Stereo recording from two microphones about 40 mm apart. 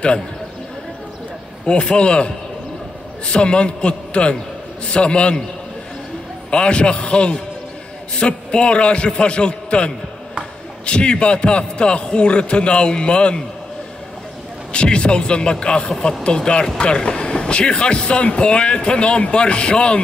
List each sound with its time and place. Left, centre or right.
1.7 s speech: left
6.5 s speech: left
14.7 s speech: left